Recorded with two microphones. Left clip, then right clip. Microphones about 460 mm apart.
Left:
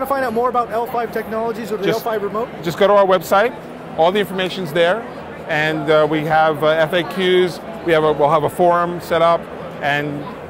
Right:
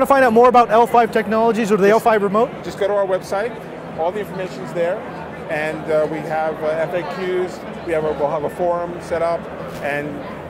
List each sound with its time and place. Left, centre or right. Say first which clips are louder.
0.0 s speech: right 6 dB; right
2.6 s speech: left 6 dB; left